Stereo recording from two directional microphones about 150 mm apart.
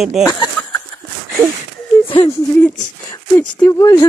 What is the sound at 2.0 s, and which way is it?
Speech, 35° left (ahead or behind).